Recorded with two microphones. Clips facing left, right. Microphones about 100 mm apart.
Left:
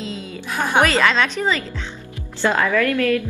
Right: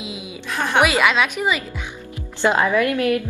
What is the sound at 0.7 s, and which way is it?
A woman's voice, 10° right (ahead or behind).